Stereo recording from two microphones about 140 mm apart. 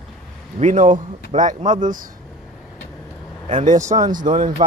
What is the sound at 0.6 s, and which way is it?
Speech, 60° right (ahead or behind).